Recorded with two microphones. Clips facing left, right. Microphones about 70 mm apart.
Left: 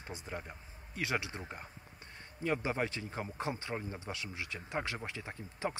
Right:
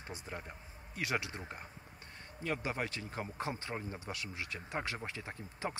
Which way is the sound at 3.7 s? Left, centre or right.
Centre.